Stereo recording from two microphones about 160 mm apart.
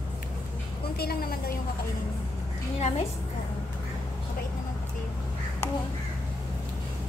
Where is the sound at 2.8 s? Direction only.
45° left (ahead or behind).